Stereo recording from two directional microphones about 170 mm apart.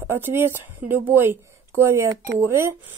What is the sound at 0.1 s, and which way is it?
Speech, 15° right (ahead or behind).